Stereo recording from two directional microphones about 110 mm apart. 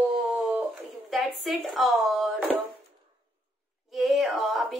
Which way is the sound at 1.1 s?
Centre (ahead or behind).